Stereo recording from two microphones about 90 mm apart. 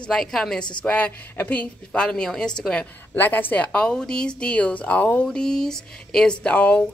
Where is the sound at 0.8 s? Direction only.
15° left (ahead or behind).